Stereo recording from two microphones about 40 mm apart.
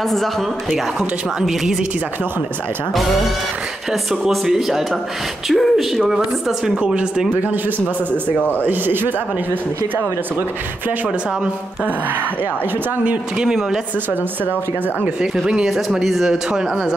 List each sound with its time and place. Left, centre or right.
0.0 s speech: centre
1.4 s a woman's voice: centre
4.5 s speech: centre
6.0 s a woman's voice: centre
8.4 s speech: left
8.6 s speech: right
15.6 s speech: centre
16.5 s a woman's voice: centre